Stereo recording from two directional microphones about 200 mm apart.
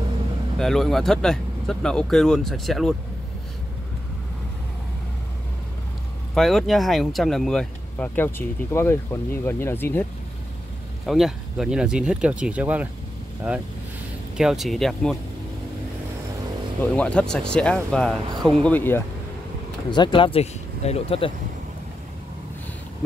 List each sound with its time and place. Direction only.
0.6 s speech: centre (ahead or behind)
6.3 s speech: centre (ahead or behind)
11.1 s speech: centre (ahead or behind)
14.3 s speech: centre (ahead or behind)
16.9 s speech: 5° left (ahead or behind)
19.9 s speech: 25° left (ahead or behind)